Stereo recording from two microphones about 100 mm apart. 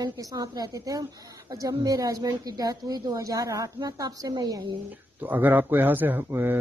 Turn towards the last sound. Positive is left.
turn(degrees=-20)  # may be behind; listen again after turning